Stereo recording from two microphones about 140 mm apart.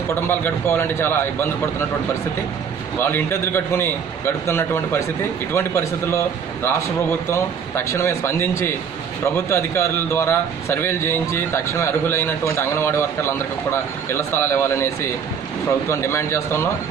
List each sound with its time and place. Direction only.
0.3 s a man's voice: 15° left (ahead or behind)
3.0 s a man's voice: 15° left (ahead or behind)